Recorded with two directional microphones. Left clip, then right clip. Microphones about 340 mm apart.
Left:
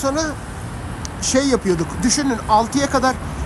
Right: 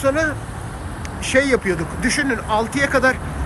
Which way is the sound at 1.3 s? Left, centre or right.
Centre.